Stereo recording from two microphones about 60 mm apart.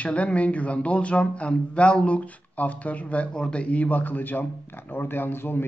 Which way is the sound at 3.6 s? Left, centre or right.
Left.